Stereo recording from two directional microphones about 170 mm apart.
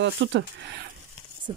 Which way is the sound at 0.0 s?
90° right.